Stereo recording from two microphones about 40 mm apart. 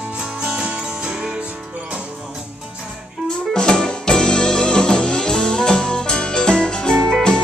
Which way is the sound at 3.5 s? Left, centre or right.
Centre.